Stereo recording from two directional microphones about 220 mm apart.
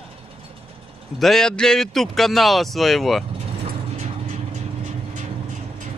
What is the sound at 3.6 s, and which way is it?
Mechanisms, 30° right (ahead or behind).